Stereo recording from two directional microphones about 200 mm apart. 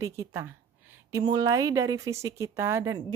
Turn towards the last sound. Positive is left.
turn(degrees=-15)  # may be behind; listen again after turning